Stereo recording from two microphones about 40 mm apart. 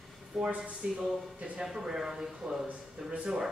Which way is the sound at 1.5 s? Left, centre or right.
Centre.